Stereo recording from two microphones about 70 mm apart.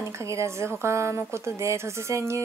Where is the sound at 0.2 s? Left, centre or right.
Right.